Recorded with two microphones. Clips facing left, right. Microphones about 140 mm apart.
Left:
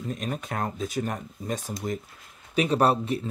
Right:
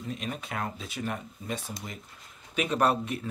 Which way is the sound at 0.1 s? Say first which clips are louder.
Left 3 dB; 45° left (ahead or behind).